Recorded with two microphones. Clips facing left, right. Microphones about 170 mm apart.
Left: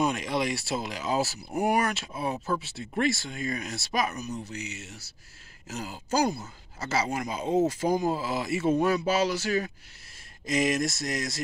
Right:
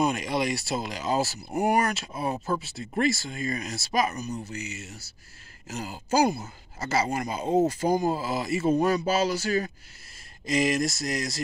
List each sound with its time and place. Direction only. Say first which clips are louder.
0.0 s speech: right 1 dB; centre (ahead or behind)
2.3 s speech: right 1 dB; 15° right (ahead or behind)
2.6 s speech: right 2 dB; centre (ahead or behind)